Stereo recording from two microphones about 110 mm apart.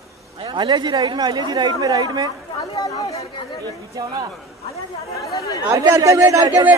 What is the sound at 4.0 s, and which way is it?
Speech, 40° right (ahead or behind).